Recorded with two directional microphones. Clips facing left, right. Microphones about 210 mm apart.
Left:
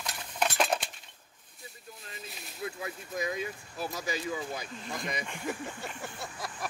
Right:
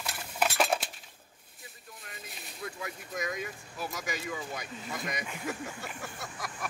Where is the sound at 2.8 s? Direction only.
30° left (ahead or behind).